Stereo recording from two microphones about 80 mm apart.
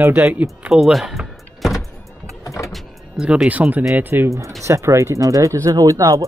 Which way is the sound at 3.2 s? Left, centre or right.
Centre.